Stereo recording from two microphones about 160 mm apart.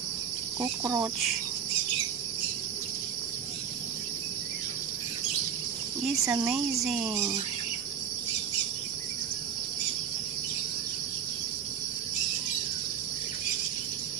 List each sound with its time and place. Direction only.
0.6 s cricket: 15° right (ahead or behind)
6.2 s cricket: 15° right (ahead or behind)
6.5 s speech: centre (ahead or behind)